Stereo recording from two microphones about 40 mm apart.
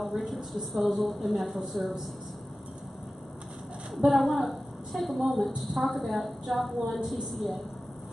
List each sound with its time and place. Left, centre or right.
0.0 s a woman's voice: centre
3.9 s a woman's voice: centre